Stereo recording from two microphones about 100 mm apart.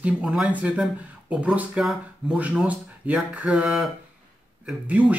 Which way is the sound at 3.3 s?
10° right (ahead or behind).